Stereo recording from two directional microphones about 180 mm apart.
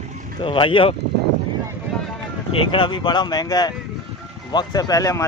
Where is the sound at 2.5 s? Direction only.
30° left (ahead or behind).